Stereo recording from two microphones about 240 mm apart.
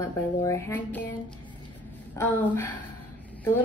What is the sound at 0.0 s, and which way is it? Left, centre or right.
Speech, centre.